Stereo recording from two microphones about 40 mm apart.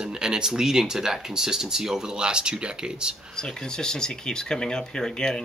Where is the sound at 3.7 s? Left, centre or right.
Centre.